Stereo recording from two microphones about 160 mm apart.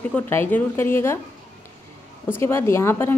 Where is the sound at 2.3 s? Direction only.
15° left (ahead or behind).